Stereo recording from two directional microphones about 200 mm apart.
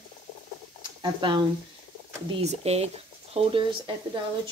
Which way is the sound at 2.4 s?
30° right (ahead or behind).